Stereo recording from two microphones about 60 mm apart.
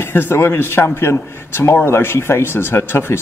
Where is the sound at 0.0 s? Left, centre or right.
Left.